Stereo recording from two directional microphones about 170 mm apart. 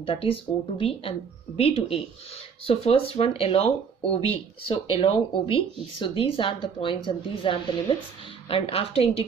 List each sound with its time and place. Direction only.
0.0 s speech: 35° left (ahead or behind)